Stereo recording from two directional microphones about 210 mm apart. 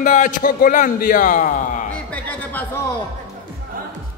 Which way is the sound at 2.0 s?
5° left (ahead or behind).